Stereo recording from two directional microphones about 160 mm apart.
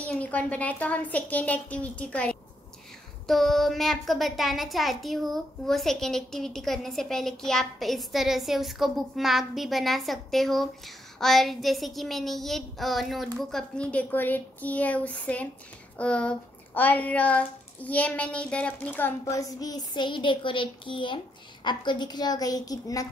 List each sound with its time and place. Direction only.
0.0 s a child's voice: 10° left (ahead or behind)